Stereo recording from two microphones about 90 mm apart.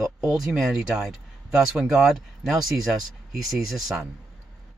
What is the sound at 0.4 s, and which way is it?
Speech, 5° right (ahead or behind).